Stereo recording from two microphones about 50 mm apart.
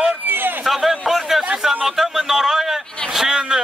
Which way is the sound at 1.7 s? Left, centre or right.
Centre.